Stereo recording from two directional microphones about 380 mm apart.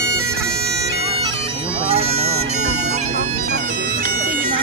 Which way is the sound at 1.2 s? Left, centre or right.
Centre.